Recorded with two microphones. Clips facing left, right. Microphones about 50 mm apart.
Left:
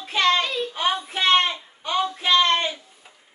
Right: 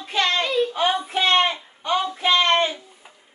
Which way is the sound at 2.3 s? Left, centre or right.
Centre.